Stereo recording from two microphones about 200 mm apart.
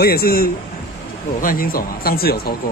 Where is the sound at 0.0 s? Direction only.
50° left (ahead or behind).